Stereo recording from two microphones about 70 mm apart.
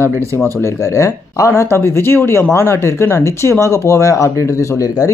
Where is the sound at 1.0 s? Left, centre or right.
Left.